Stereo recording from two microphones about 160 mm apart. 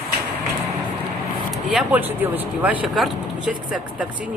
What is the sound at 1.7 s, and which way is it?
Speech, 10° right (ahead or behind).